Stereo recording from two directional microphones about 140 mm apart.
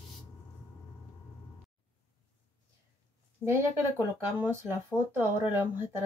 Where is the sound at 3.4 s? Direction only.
20° right (ahead or behind).